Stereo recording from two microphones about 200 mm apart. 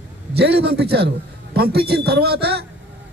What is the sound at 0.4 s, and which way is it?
A man's voice, 55° right (ahead or behind).